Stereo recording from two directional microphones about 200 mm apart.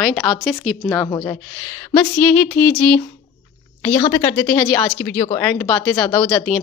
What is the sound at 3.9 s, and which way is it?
Speech, 20° left (ahead or behind).